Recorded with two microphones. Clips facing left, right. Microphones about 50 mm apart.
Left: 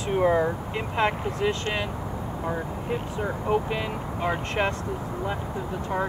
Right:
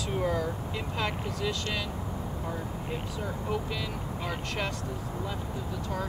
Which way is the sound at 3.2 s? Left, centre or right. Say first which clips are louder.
Left 8 dB; left.